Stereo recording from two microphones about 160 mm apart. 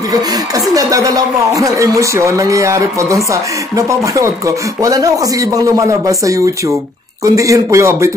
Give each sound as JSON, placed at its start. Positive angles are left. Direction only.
{"t": 0.7, "sound": "speech", "side_deg": -20}